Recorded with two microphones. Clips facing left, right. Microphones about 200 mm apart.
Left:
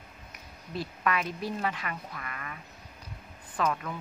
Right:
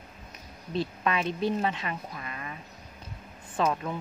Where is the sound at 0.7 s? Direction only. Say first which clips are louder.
Right 2 dB; 25° right (ahead or behind).